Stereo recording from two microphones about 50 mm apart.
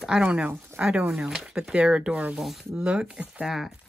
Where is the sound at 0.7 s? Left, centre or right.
Right.